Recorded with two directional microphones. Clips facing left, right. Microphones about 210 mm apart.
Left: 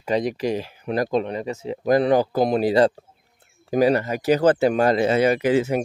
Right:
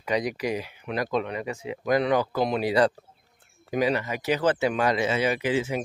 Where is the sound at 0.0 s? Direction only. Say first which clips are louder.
Left 4 dB; 30° left (ahead or behind).